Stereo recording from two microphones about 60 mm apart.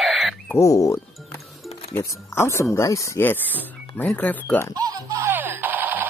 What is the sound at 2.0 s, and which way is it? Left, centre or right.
Speech, left.